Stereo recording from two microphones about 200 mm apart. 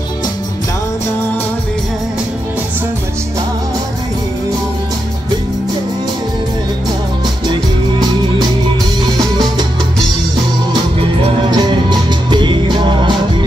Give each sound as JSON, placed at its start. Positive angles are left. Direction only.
{"t": 11.5, "sound": "music", "side_deg": -20}